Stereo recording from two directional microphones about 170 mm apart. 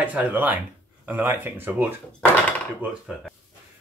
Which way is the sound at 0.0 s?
10° right (ahead or behind).